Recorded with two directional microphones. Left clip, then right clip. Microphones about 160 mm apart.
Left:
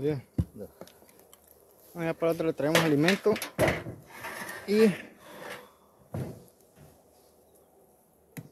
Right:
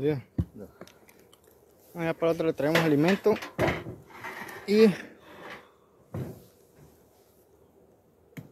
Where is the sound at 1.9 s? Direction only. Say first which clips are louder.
Right 2 dB; 15° right (ahead or behind).